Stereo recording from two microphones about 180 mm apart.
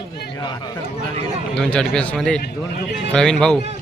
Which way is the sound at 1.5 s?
5° left (ahead or behind).